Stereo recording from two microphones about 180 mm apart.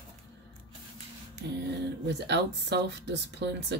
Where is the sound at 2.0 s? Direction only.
70° right (ahead or behind).